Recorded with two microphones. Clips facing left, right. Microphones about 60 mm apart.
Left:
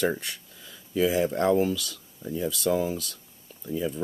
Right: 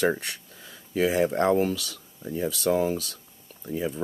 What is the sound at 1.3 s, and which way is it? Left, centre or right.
Speech, right.